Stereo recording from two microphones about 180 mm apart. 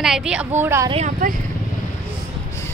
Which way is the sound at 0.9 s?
35° right (ahead or behind).